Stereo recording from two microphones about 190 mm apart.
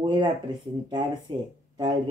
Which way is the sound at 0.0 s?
25° right (ahead or behind).